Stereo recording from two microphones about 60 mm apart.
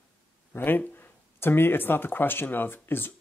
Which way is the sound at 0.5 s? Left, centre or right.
Left.